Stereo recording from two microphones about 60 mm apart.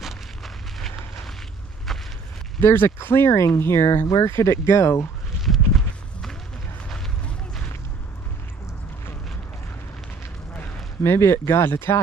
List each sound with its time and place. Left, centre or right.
0.0 s a sound: centre
2.6 s speech: left
4.1 s speech: left
11.0 s speech: left